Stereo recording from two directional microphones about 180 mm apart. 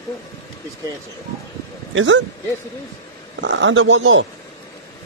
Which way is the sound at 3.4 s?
90° right.